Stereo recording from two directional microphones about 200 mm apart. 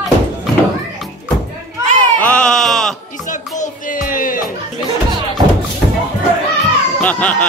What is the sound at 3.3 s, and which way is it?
Music, 40° left (ahead or behind).